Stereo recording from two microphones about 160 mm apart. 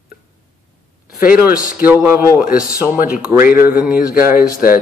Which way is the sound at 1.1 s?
65° left (ahead or behind).